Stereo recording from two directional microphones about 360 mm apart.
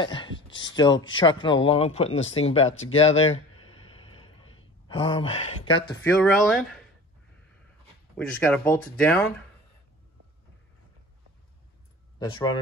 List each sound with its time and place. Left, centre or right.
0.0 s speech: centre
2.7 s speech: left
3.0 s a sound: centre
6.0 s speech: centre
8.2 s speech: centre
12.2 s speech: centre